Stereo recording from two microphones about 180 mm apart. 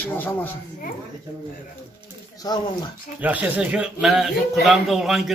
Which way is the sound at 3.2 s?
10° right (ahead or behind).